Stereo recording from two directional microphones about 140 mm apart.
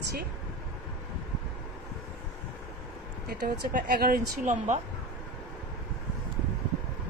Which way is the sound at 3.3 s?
90° right.